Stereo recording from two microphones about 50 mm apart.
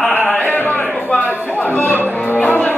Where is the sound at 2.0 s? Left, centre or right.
Left.